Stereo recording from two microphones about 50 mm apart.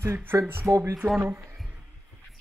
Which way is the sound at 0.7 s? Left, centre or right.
Right.